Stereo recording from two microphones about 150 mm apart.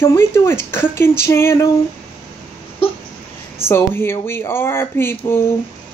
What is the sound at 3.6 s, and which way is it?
Speech, 15° left (ahead or behind).